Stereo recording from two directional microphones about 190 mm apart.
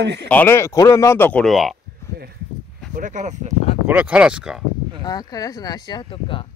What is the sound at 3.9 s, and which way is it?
Speech, 5° right (ahead or behind).